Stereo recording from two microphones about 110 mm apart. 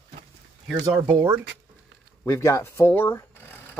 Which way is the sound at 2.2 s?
25° left (ahead or behind).